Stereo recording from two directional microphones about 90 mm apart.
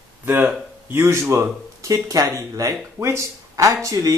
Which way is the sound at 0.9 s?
30° right (ahead or behind).